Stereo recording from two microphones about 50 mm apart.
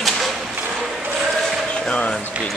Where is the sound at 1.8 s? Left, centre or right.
Left.